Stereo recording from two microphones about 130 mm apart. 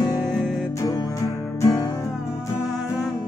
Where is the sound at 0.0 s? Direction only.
30° left (ahead or behind).